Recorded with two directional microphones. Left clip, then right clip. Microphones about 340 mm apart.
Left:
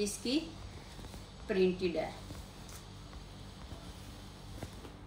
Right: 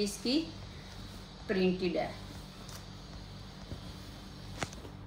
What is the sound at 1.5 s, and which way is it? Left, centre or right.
Speech, centre.